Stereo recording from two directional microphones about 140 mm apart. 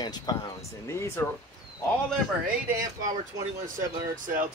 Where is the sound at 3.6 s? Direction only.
70° right (ahead or behind).